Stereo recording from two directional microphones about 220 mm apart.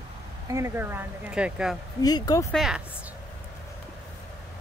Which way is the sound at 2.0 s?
15° left (ahead or behind).